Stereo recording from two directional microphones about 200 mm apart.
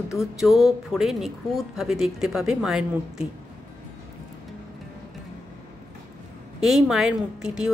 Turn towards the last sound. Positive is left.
turn(degrees=0)  # may be behind; listen again after turning